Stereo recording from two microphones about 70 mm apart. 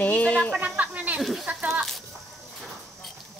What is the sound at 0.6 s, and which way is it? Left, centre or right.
Snake, right.